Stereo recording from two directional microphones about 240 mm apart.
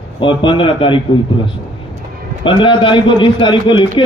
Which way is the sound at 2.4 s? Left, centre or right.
Centre.